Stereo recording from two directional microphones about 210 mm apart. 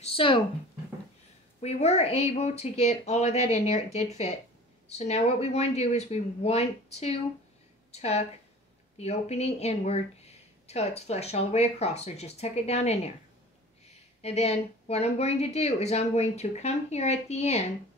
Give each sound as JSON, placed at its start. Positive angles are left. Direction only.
{"t": 0.0, "sound": "speech", "side_deg": 25}
{"t": 1.6, "sound": "speech", "side_deg": 30}
{"t": 14.2, "sound": "speech", "side_deg": 30}